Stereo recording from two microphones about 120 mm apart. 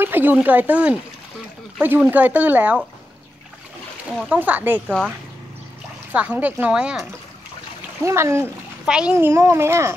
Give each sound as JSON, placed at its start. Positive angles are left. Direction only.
{"t": 0.0, "sound": "speech", "side_deg": -15}
{"t": 4.3, "sound": "speech", "side_deg": -15}
{"t": 4.8, "sound": "speech", "side_deg": 5}
{"t": 6.1, "sound": "speech", "side_deg": -10}
{"t": 8.0, "sound": "speech", "side_deg": -25}
{"t": 8.8, "sound": "a child's voice", "side_deg": -5}
{"t": 9.1, "sound": "speech", "side_deg": -20}